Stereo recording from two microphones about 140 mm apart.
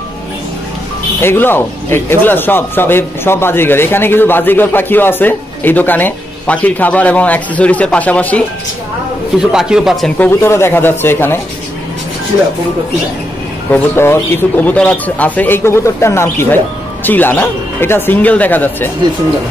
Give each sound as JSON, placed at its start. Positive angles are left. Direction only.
{"t": 1.2, "sound": "speech", "side_deg": 15}
{"t": 9.4, "sound": "a man's voice", "side_deg": -5}
{"t": 10.1, "sound": "speech", "side_deg": 15}
{"t": 13.7, "sound": "speech", "side_deg": 15}